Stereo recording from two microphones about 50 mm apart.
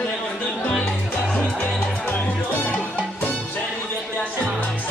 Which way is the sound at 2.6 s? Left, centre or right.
Left.